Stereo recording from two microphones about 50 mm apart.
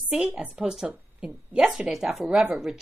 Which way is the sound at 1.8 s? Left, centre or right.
Centre.